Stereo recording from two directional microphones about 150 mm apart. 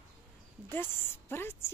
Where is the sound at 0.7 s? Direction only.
15° left (ahead or behind).